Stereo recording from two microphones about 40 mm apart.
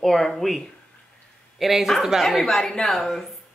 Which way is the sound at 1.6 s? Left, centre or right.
Centre.